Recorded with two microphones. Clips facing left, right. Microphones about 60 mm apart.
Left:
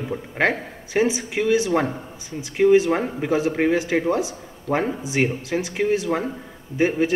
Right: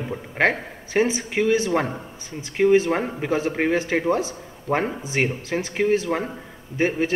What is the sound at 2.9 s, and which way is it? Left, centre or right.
Speech, centre.